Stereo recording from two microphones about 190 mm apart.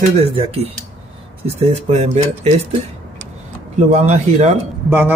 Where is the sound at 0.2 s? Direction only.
30° right (ahead or behind).